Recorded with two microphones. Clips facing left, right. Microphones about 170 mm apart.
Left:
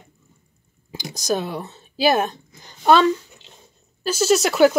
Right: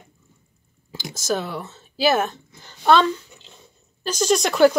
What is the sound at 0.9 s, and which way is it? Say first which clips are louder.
Speech: left 1 dB; 15° left (ahead or behind).